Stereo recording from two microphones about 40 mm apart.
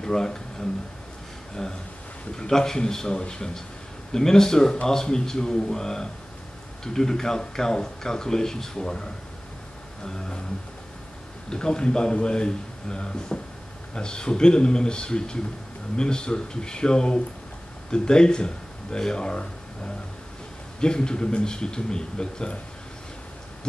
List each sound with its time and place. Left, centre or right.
0.0 s speech: centre
11.5 s a man's voice: left
20.8 s a man's voice: left